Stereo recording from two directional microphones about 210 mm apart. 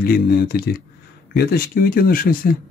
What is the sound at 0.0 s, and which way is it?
Speech, 45° left (ahead or behind).